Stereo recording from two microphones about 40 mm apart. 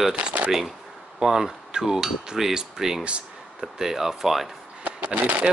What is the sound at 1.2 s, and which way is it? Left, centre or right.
Cutlery, centre.